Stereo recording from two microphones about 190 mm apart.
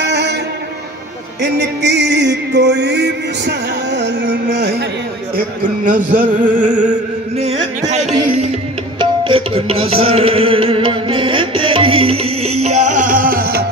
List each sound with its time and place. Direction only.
0.0 s music: 65° right (ahead or behind)
1.4 s music: 65° right (ahead or behind)
5.9 s music: 45° right (ahead or behind)
9.2 s music: 30° right (ahead or behind); by 13.6 s 50° right (ahead or behind)